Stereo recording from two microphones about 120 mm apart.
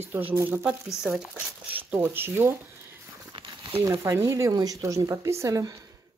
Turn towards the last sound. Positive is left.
turn(degrees=-30)  # may be behind; listen again after turning